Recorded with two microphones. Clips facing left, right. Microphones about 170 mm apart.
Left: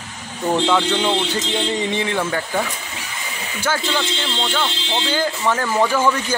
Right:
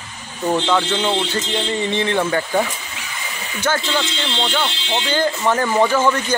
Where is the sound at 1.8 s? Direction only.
10° left (ahead or behind).